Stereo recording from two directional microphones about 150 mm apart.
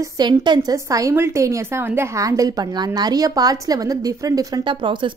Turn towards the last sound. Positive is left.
turn(degrees=-35)  # may be behind; listen again after turning